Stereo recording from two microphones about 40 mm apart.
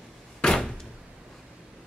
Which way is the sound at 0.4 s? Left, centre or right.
Centre.